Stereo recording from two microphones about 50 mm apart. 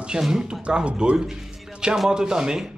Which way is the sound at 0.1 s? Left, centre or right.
Centre.